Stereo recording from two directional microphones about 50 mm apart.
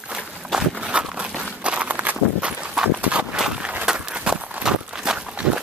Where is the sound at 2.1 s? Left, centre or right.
Centre.